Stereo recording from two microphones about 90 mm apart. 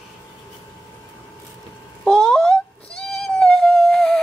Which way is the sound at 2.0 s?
10° left (ahead or behind).